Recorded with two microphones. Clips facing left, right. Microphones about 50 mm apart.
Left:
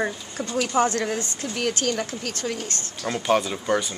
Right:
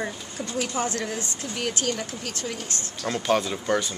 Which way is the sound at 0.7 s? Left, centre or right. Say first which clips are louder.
Left 6 dB; left.